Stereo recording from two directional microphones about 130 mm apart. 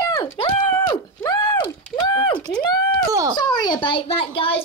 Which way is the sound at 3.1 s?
25° right (ahead or behind).